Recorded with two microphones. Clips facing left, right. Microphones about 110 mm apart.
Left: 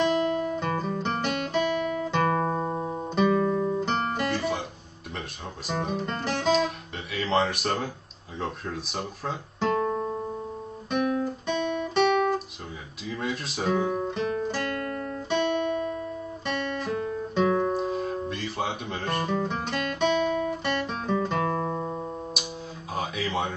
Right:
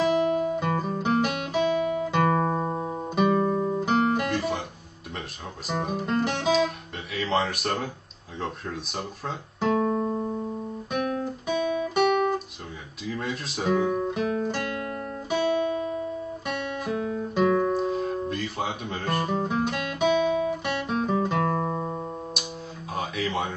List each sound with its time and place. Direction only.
0.4 s guitar: 10° right (ahead or behind)
1.7 s guitar: 15° right (ahead or behind)
2.7 s music: 5° right (ahead or behind)
3.3 s guitar: 25° right (ahead or behind)
3.8 s guitar: centre (ahead or behind)
5.7 s speech: centre (ahead or behind)
8.4 s guitar: centre (ahead or behind)
11.4 s guitar: 5° right (ahead or behind)
14.6 s guitar: 10° right (ahead or behind)
17.7 s music: centre (ahead or behind)
19.4 s guitar: 5° right (ahead or behind)
21.5 s music: 15° right (ahead or behind)
22.9 s a sound: centre (ahead or behind)